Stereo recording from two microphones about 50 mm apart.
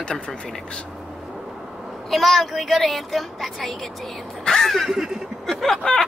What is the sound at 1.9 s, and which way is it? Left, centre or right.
Speech, centre.